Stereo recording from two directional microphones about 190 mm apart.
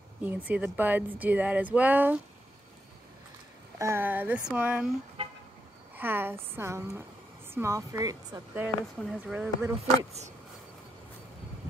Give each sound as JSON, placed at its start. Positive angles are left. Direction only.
{"t": 0.2, "sound": "speech", "side_deg": -10}
{"t": 3.7, "sound": "speech", "side_deg": -15}
{"t": 5.2, "sound": "vehicle", "side_deg": -25}
{"t": 5.9, "sound": "speech", "side_deg": -10}